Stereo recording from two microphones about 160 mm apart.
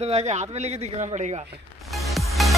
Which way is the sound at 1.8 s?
Centre (ahead or behind).